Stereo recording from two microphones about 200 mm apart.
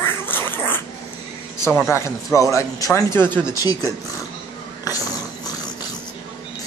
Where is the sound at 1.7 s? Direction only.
Centre (ahead or behind).